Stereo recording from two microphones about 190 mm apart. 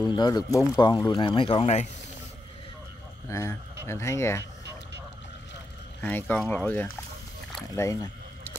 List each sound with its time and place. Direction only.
0.0 s speech: 20° left (ahead or behind)
3.3 s speech: 15° left (ahead or behind)
5.9 s speech: 10° left (ahead or behind)
7.7 s a sound: 15° left (ahead or behind)